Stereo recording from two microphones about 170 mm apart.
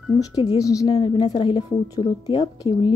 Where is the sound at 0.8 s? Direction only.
30° left (ahead or behind).